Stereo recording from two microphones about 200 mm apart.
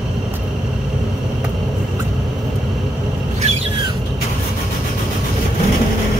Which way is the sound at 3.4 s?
30° right (ahead or behind).